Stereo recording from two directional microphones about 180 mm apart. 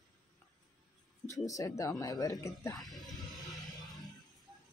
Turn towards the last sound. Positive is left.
turn(degrees=0)  # may be behind; listen again after turning